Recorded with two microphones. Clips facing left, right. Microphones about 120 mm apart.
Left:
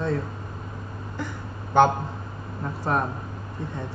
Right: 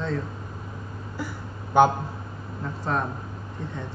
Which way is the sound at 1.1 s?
10° right (ahead or behind).